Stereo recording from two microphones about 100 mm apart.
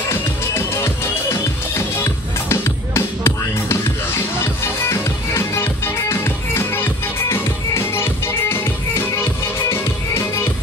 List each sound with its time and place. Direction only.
1.3 s music: 25° left (ahead or behind)